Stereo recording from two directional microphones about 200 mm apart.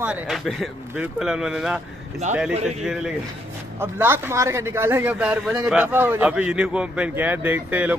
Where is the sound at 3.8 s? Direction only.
10° right (ahead or behind).